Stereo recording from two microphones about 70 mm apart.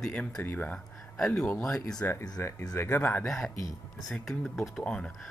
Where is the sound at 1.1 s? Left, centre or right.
Centre.